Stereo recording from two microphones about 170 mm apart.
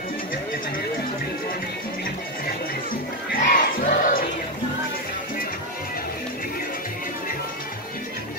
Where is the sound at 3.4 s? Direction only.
55° left (ahead or behind).